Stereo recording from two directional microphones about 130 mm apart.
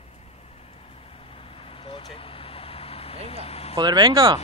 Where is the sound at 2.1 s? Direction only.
45° left (ahead or behind).